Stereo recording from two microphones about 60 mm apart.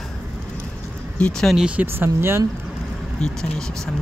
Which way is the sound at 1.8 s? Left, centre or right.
Right.